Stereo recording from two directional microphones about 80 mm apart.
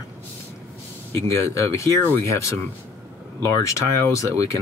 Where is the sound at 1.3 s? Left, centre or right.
Left.